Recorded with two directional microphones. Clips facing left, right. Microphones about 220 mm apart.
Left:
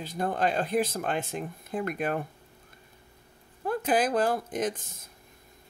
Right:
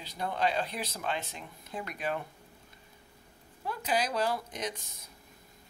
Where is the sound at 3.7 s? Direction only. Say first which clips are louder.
Left 6 dB; 50° left (ahead or behind).